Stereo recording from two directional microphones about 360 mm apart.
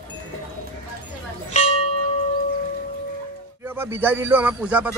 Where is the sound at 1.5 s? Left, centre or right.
Centre.